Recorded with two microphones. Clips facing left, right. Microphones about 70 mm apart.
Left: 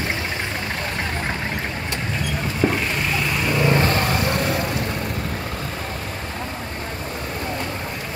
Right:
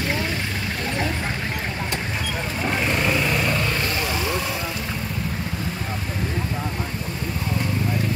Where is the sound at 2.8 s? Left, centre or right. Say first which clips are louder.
Right 2 dB; centre.